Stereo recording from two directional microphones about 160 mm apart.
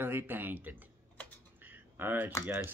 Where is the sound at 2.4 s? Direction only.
10° right (ahead or behind).